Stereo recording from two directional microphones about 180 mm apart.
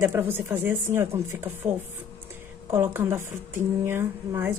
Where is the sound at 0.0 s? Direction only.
15° right (ahead or behind).